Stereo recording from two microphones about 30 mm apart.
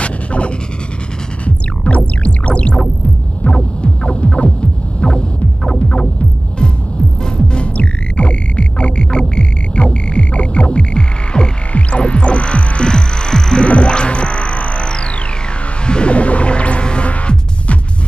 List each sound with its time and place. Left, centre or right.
0.0 s pant: left
1.4 s music: left
3.5 s throbbing: left
7.2 s music: left
7.6 s music: left
11.7 s music: left
13.7 s music: left
15.9 s music: left